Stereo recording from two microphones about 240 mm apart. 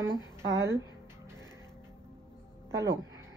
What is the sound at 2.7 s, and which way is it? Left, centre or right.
Speech, centre.